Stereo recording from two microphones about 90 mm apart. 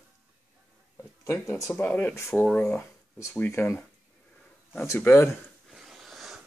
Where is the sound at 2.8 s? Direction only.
35° left (ahead or behind).